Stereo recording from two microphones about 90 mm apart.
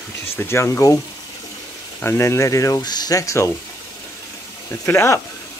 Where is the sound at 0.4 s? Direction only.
30° left (ahead or behind).